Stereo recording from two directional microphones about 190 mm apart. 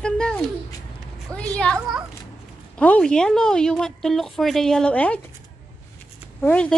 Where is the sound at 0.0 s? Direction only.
5° left (ahead or behind).